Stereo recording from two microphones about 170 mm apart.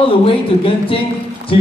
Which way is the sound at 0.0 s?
30° left (ahead or behind).